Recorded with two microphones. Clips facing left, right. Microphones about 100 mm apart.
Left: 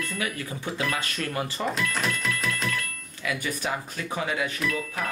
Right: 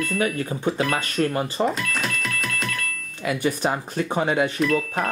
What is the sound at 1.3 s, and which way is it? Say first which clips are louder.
Speech: right 6 dB; 30° right (ahead or behind).